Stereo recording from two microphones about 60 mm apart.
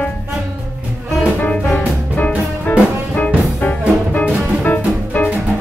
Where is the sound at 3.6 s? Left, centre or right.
Left.